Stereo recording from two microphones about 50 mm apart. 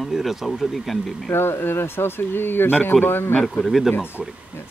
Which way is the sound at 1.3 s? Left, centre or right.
Left.